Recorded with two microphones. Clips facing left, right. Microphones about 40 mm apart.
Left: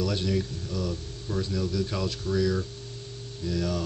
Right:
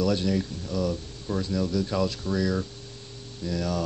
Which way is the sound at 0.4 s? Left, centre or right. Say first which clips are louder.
Right 3 dB; right.